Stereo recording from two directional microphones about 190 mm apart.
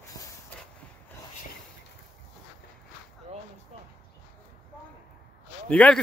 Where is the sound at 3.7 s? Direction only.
35° right (ahead or behind).